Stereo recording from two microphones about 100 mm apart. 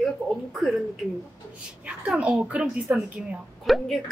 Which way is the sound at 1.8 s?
10° right (ahead or behind).